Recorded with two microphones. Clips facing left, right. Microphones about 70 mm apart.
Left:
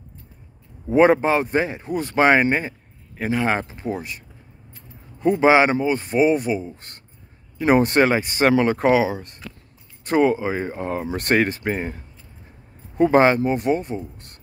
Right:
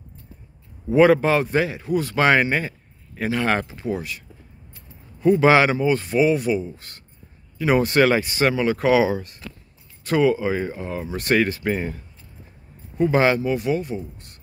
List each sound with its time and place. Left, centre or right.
0.8 s a man's voice: left
3.6 s a man's voice: left
5.3 s a man's voice: left
8.9 s speech: centre
10.0 s speech: left
10.8 s speech: left
11.3 s speech: left
13.1 s speech: left